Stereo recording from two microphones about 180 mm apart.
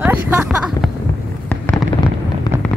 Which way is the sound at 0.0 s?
10° right (ahead or behind).